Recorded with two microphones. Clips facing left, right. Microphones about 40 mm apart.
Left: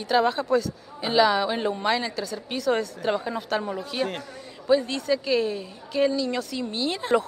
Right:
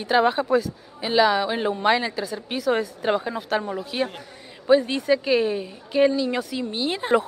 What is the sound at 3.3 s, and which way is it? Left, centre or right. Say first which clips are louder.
Speech: right 2 dB; centre.